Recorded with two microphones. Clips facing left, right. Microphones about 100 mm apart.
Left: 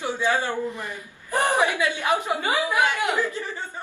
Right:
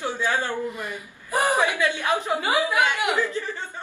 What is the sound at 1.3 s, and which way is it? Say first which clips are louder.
Speech: even; 10° right (ahead or behind).